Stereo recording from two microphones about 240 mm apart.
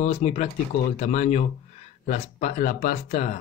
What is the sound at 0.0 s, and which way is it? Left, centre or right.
Speech, left.